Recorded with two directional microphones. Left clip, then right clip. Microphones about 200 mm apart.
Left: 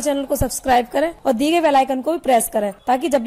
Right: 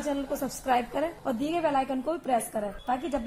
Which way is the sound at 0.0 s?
30° left (ahead or behind).